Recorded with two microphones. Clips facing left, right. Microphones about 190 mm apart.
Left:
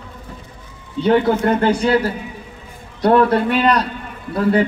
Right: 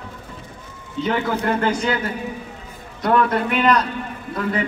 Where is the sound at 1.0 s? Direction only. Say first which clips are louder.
Left 7 dB; 35° left (ahead or behind).